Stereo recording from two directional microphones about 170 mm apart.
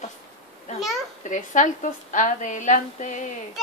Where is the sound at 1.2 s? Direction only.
45° left (ahead or behind).